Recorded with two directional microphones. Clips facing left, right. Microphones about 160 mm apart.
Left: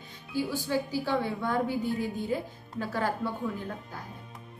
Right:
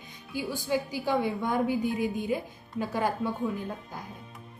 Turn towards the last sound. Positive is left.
turn(degrees=-15)  # may be behind; listen again after turning